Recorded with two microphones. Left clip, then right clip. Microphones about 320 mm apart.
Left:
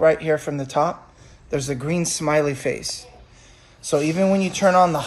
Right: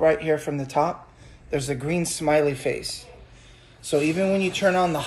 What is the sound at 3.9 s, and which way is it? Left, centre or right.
Speech, left.